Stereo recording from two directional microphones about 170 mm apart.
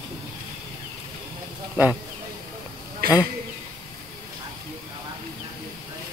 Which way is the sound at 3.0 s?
60° right (ahead or behind).